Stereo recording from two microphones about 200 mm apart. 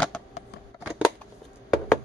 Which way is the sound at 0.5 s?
55° left (ahead or behind).